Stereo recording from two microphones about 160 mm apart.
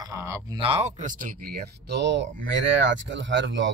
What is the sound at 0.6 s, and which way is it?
Speech, 40° right (ahead or behind).